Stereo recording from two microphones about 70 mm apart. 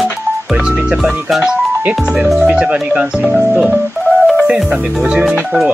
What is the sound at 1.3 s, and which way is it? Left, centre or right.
Speech, centre.